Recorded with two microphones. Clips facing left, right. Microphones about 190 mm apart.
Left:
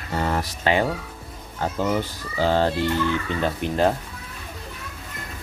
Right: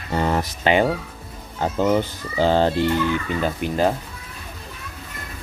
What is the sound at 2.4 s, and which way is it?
Speech, 20° right (ahead or behind).